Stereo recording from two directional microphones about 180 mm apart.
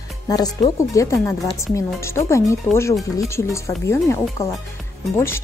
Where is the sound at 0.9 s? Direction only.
15° left (ahead or behind).